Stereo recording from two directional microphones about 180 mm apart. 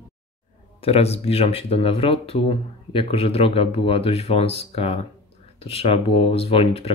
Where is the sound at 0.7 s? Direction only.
35° left (ahead or behind).